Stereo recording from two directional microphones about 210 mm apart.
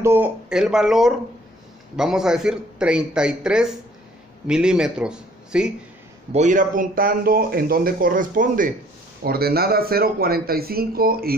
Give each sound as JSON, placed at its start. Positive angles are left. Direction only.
{"t": 0.0, "sound": "a man's voice", "side_deg": -10}
{"t": 6.3, "sound": "a man's voice", "side_deg": -35}